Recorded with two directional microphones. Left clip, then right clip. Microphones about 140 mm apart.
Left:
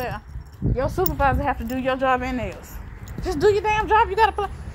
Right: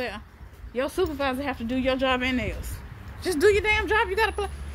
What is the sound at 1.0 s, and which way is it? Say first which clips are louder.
A woman's voice: left 6 dB; 40° right (ahead or behind).